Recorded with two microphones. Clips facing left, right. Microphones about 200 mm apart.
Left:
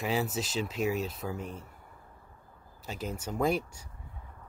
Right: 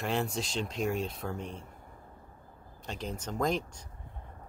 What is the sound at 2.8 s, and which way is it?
Speech, 5° left (ahead or behind).